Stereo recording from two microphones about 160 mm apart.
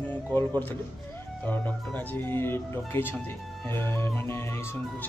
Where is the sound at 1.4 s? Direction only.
10° left (ahead or behind).